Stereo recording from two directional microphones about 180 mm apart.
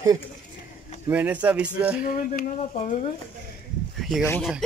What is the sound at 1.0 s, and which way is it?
Speech, 10° right (ahead or behind).